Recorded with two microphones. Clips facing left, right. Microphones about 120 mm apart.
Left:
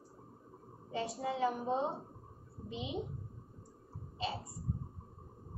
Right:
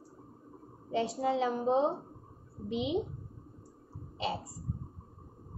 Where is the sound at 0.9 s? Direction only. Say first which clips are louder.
Right 7 dB; 80° right.